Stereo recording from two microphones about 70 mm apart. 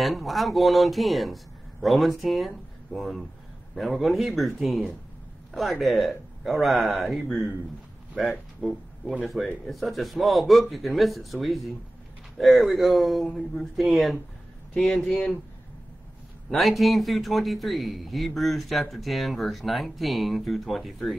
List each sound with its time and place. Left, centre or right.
0.0 s a man's voice: centre
9.4 s speech: centre
9.7 s a man's voice: centre
14.7 s speech: centre
16.4 s a man's voice: centre